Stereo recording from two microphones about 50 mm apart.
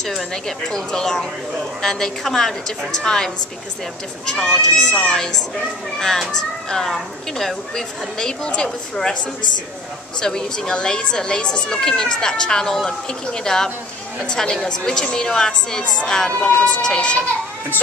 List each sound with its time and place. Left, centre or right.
0.0 s speech: centre
4.3 s speech: centre
10.2 s speech: centre